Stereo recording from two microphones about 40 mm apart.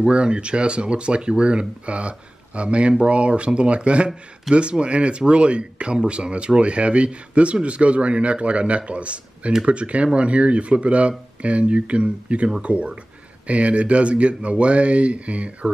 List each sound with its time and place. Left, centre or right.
0.0 s speech: right